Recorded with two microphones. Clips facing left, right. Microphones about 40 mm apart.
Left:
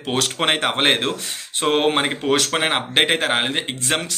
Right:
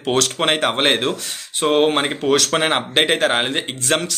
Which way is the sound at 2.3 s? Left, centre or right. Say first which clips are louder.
Right 4 dB; centre.